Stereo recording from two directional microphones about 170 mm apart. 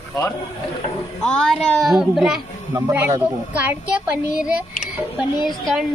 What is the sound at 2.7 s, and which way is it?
A child's voice, 15° right (ahead or behind).